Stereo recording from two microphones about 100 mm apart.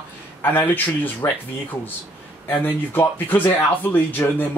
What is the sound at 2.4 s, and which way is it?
Speech, 20° left (ahead or behind).